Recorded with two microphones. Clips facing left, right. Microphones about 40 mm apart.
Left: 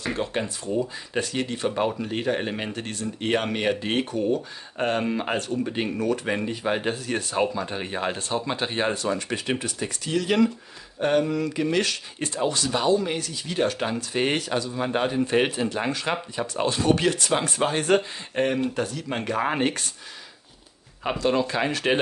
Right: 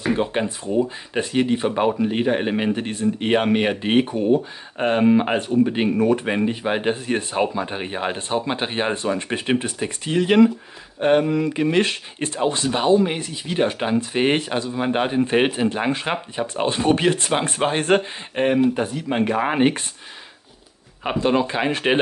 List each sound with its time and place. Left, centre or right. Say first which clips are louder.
0.0 s speech: right 6 dB; right
18.3 s speech: right 6 dB; centre
21.0 s speech: right 3 dB; right